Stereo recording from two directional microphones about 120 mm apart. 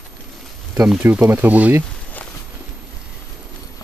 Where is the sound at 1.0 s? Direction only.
15° right (ahead or behind).